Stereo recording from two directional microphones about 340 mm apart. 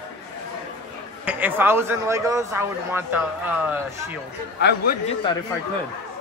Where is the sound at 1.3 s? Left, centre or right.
Centre.